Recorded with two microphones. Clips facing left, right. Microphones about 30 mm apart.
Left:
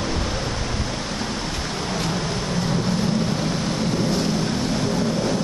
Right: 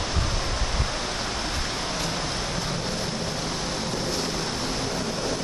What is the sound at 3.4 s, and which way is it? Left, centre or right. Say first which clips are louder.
Vehicle: left 5 dB; left.